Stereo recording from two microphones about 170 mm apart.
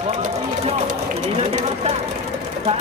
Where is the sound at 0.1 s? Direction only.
40° right (ahead or behind).